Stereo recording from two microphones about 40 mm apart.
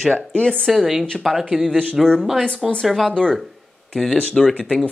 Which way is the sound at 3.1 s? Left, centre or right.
Centre.